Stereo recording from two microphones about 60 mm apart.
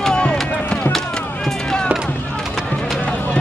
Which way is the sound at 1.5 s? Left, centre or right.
Centre.